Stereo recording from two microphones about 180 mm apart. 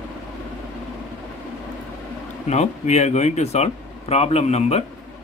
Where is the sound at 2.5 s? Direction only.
40° left (ahead or behind).